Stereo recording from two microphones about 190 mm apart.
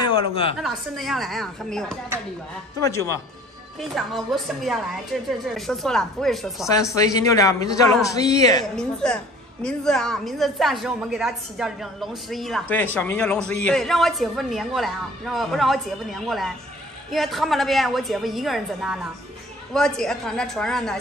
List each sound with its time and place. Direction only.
0.1 s a woman's voice: 30° left (ahead or behind)
0.6 s a woman's voice: centre (ahead or behind)
2.8 s a man's voice: 15° left (ahead or behind)
3.8 s a woman's voice: centre (ahead or behind)
6.7 s a man's voice: 15° left (ahead or behind)
8.7 s a woman's voice: 5° left (ahead or behind)